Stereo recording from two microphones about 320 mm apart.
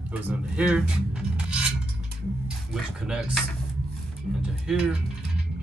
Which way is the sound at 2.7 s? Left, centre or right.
Centre.